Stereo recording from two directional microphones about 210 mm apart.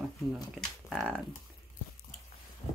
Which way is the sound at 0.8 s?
5° left (ahead or behind).